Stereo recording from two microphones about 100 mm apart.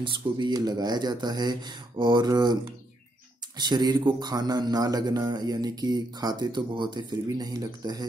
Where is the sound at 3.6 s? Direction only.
45° right (ahead or behind).